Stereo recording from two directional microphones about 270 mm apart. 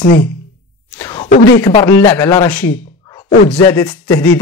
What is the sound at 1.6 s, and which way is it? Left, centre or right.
Speech, centre.